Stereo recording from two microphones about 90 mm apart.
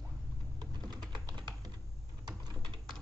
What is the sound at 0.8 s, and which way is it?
Typing, 50° right (ahead or behind).